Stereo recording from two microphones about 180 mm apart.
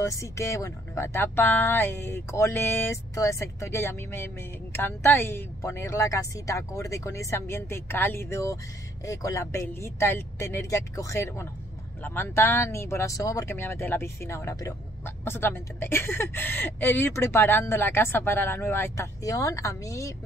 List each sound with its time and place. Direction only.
0.0 s speech: 15° left (ahead or behind)